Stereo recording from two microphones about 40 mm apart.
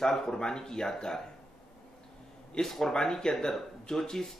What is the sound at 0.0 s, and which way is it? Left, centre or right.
Speech, centre.